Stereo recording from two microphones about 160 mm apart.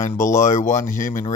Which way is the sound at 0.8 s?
55° left (ahead or behind).